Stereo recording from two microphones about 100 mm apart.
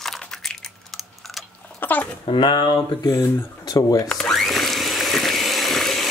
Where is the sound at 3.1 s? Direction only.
30° left (ahead or behind).